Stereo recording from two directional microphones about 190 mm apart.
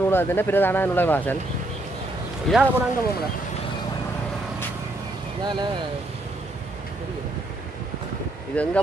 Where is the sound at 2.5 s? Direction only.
5° left (ahead or behind).